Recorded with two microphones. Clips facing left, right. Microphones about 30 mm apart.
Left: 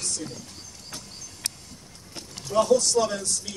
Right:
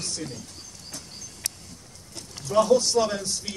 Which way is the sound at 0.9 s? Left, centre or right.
Left.